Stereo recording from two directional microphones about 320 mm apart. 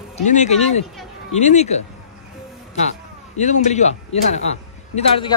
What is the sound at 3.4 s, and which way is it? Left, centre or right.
A man's voice, left.